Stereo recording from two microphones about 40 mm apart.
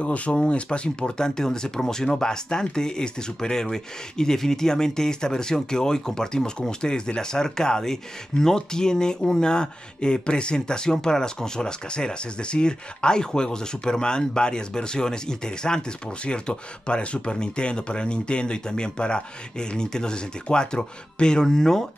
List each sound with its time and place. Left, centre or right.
0.0 s speech: left; by 21.8 s centre